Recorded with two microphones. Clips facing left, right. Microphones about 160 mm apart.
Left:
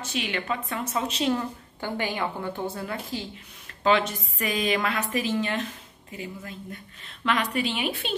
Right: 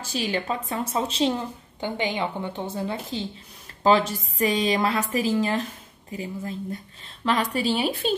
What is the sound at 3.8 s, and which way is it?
A woman's voice, 35° right (ahead or behind).